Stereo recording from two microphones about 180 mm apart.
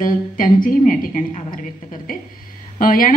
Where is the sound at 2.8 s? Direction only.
50° left (ahead or behind).